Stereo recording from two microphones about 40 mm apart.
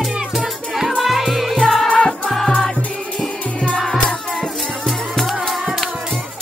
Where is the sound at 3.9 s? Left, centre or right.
Left.